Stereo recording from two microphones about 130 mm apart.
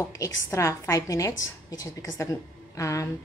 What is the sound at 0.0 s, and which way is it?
A woman's voice, 20° left (ahead or behind).